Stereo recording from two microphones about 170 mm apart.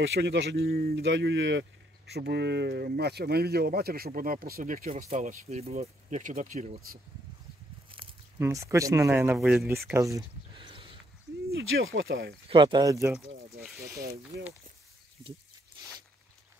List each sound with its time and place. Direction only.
0.0 s speech: 90° right
2.1 s speech: 80° right; by 7.0 s 50° right (ahead or behind)
7.9 s a sound: 30° right (ahead or behind)
8.4 s speech: 20° right (ahead or behind)
10.5 s a sound: 30° right (ahead or behind)
11.4 s speech: 70° right (ahead or behind)
12.4 s speech: 30° right (ahead or behind)
13.1 s speech: centre (ahead or behind)